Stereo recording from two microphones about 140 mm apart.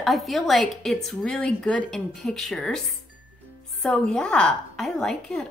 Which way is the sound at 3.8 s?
5° left (ahead or behind).